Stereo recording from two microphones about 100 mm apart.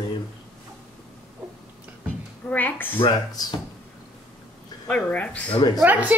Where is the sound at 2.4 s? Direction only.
15° left (ahead or behind).